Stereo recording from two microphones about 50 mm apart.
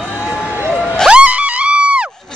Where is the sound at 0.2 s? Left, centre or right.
Centre.